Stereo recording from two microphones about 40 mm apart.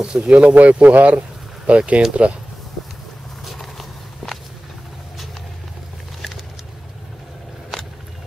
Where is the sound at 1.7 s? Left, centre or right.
Right.